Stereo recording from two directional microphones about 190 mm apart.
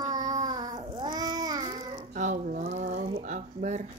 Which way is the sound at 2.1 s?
40° right (ahead or behind).